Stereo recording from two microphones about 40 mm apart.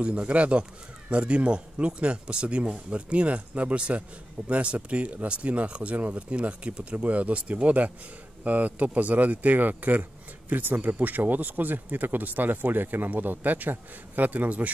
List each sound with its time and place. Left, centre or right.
0.0 s a man's voice: right